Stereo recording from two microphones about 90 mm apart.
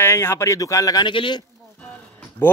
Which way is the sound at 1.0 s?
65° left (ahead or behind).